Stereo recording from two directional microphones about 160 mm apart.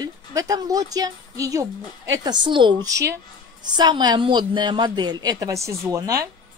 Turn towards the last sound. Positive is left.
turn(degrees=-20)  # may be behind; listen again after turning